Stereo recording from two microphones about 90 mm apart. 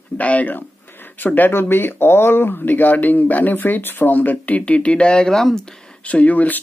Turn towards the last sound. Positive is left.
turn(degrees=15)  # may be behind; listen again after turning